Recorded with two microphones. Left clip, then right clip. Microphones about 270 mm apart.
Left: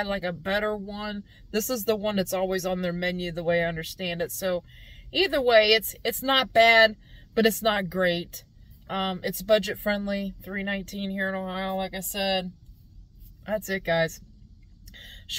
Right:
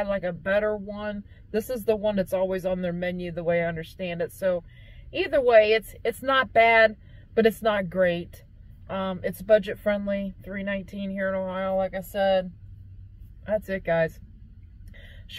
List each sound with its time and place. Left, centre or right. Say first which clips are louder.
0.1 s speech: right 3 dB; centre
13.5 s speech: right 1 dB; centre
15.0 s a sound: left 5 dB; left